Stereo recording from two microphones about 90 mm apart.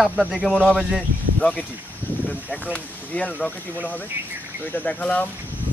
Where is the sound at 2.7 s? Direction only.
15° left (ahead or behind).